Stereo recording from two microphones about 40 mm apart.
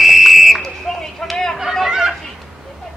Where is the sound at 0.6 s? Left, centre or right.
Centre.